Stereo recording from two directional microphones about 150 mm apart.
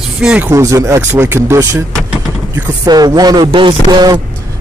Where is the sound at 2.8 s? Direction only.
25° right (ahead or behind).